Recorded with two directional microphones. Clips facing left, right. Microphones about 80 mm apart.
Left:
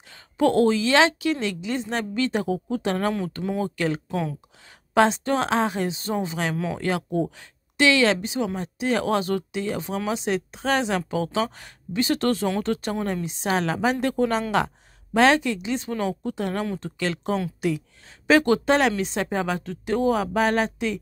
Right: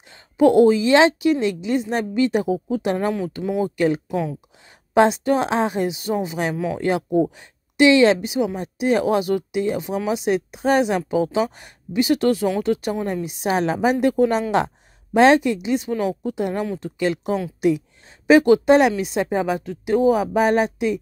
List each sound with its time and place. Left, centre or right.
0.1 s speech: centre
5.2 s speech: centre
6.8 s speech: right